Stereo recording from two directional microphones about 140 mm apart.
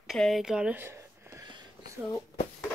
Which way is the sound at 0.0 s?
Centre (ahead or behind).